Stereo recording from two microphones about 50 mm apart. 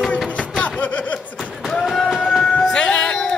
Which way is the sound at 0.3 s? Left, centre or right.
Left.